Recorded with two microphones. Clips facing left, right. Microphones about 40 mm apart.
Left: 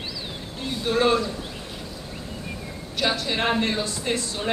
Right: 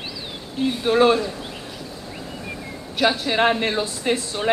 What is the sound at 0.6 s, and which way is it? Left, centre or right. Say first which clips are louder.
Speech: right 5 dB; right.